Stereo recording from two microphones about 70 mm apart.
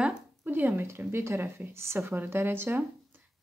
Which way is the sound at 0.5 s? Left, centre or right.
Right.